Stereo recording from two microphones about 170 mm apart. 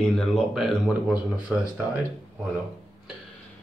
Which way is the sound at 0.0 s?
5° left (ahead or behind).